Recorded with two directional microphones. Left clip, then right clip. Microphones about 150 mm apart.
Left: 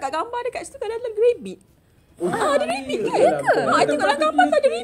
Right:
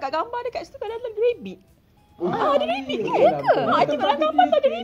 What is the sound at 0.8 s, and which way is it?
Speech, 30° left (ahead or behind).